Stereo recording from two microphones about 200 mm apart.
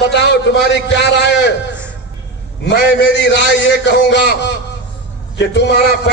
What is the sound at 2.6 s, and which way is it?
A man's voice, 60° left (ahead or behind).